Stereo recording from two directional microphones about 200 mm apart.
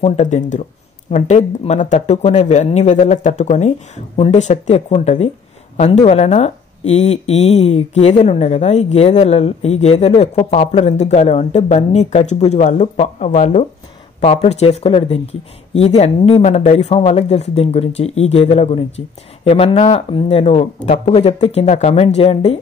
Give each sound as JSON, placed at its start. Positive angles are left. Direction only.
{"t": 0.0, "sound": "speech", "side_deg": 35}